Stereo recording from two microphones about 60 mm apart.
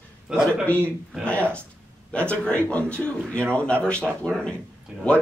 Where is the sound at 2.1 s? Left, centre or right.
Centre.